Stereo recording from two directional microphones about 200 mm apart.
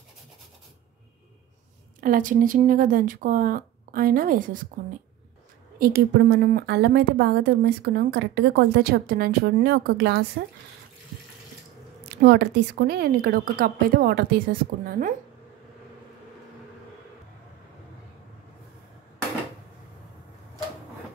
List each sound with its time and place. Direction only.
2.0 s a woman's voice: 40° right (ahead or behind)
5.8 s a woman's voice: 50° right (ahead or behind)
12.2 s a woman's voice: 55° right (ahead or behind)